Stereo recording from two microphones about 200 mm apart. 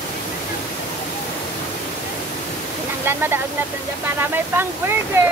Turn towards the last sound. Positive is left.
turn(degrees=-10)  # may be behind; listen again after turning